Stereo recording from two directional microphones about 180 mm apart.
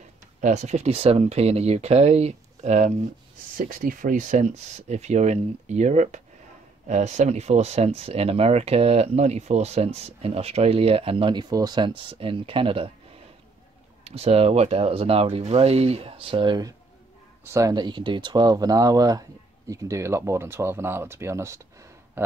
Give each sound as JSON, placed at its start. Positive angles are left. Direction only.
{"t": 0.4, "sound": "speech", "side_deg": -40}
{"t": 3.5, "sound": "speech", "side_deg": -50}
{"t": 14.0, "sound": "speech", "side_deg": -35}